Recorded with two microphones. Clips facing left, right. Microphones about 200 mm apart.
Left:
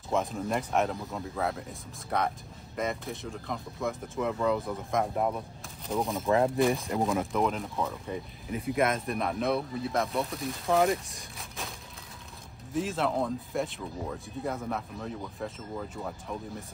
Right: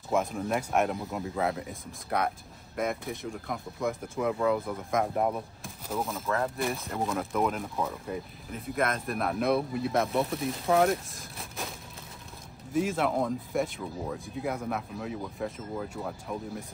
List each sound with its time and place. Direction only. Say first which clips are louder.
0.1 s speech: right 1 dB; 5° right (ahead or behind)
1.1 s speech: right 2 dB; 15° right (ahead or behind)
1.7 s speech: right 1 dB; centre (ahead or behind)
6.2 s speech: left 7 dB; 15° left (ahead or behind)
6.6 s speech: left 5 dB; centre (ahead or behind)
13.0 s speech: right 1 dB; centre (ahead or behind)